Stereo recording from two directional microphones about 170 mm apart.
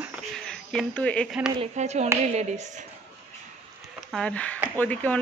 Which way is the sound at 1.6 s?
40° right (ahead or behind).